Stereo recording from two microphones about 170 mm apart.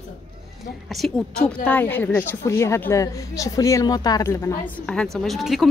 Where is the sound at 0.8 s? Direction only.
Centre (ahead or behind).